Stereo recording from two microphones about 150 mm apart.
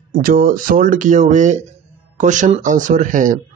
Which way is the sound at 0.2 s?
70° right (ahead or behind).